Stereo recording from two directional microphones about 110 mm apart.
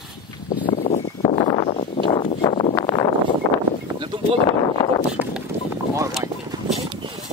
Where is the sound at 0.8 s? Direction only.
70° left (ahead or behind).